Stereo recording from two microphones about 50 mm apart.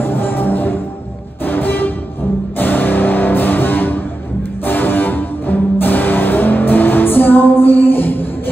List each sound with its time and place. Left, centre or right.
0.0 s music: left